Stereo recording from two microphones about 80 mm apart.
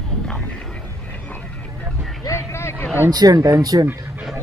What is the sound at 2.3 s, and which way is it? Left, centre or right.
Vehicle, left.